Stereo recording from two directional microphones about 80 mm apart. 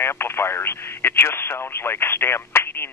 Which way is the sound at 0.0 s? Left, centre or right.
Left.